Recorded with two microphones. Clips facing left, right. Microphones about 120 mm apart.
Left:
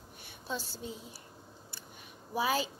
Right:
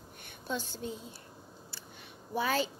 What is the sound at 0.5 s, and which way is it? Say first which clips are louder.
Speech: right 2 dB; 40° left (ahead or behind).